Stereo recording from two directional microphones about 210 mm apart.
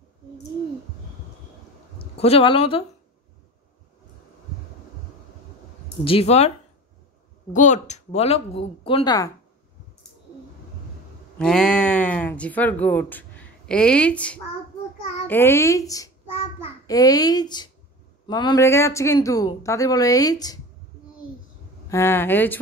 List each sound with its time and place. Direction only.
2.0 s speech: 30° left (ahead or behind)
6.0 s speech: 30° left (ahead or behind)
7.5 s speech: 35° left (ahead or behind); by 9.3 s 20° left (ahead or behind)
11.3 s speech: 5° left (ahead or behind)
21.8 s speech: 10° left (ahead or behind)